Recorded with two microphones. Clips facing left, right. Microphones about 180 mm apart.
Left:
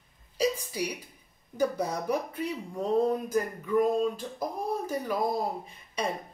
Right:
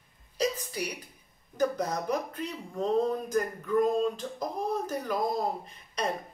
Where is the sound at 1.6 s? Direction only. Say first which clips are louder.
Even; 10° left (ahead or behind).